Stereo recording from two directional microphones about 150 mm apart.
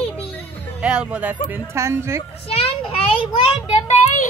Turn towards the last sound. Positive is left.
turn(degrees=45)  # may be behind; listen again after turning